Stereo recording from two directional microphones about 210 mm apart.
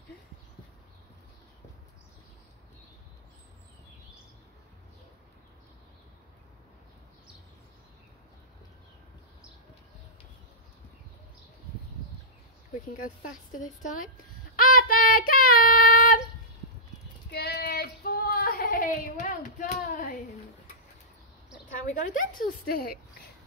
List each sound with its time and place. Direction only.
12.9 s speech: 40° left (ahead or behind)
14.6 s child singing: 40° left (ahead or behind)
17.3 s a sound: 50° left (ahead or behind)
21.8 s speech: 35° left (ahead or behind)